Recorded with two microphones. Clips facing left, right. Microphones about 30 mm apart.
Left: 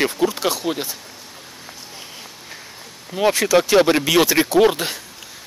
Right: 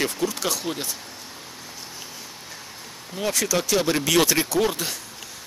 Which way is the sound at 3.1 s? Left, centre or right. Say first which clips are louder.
Left 8 dB; left.